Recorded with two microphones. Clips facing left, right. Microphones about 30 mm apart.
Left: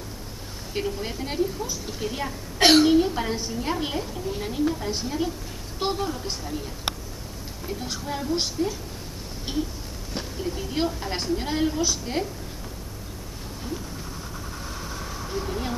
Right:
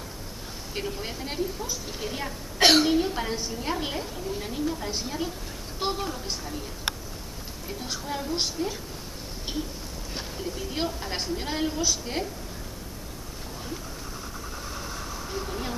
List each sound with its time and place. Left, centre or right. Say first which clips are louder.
0.7 s a woman's voice: left 4 dB; centre
9.5 s a woman's voice: left 4 dB; centre
15.3 s a sound: left 4 dB; centre